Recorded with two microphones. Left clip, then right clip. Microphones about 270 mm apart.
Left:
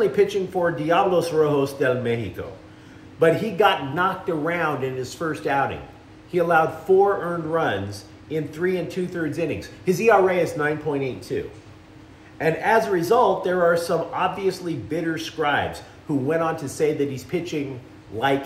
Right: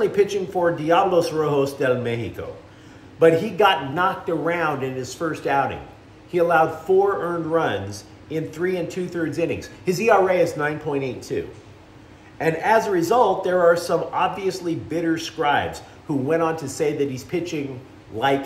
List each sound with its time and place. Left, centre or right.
0.0 s a man's voice: centre